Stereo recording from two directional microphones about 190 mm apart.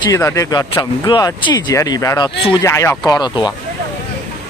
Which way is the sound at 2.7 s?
15° left (ahead or behind).